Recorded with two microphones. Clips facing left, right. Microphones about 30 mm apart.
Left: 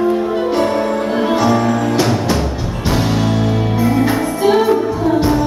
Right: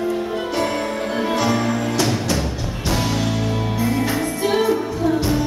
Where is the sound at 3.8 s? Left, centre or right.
Centre.